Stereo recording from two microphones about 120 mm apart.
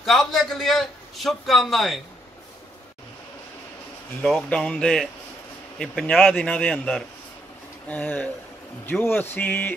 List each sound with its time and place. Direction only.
0.0 s a man's voice: centre (ahead or behind)
4.2 s a man's voice: 5° left (ahead or behind)